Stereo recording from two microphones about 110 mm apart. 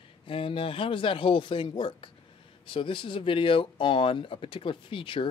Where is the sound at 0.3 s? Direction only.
55° left (ahead or behind).